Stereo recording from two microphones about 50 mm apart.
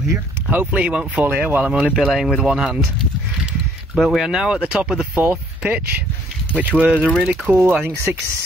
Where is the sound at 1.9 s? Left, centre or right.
Centre.